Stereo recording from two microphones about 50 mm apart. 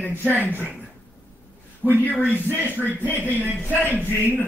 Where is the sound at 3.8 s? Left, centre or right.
Left.